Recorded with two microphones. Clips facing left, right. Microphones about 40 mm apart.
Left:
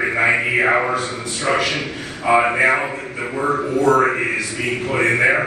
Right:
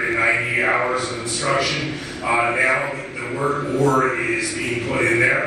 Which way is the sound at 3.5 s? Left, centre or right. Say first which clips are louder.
Left 3 dB; left.